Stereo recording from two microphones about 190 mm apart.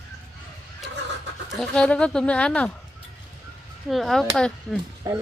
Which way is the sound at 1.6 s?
5° left (ahead or behind).